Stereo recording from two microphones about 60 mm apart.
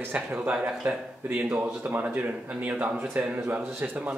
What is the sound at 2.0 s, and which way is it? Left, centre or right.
Speech, right.